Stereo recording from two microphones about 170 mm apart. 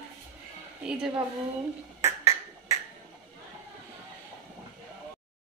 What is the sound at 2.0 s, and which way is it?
Finger snapping, 15° right (ahead or behind).